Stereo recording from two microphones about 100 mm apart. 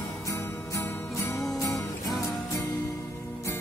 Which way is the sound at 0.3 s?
30° left (ahead or behind).